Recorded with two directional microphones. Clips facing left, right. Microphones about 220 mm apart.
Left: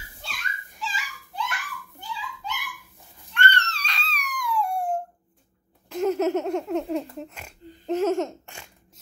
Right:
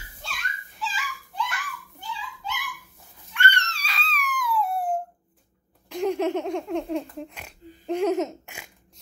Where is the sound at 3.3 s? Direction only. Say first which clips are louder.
Left 2 dB; 10° right (ahead or behind).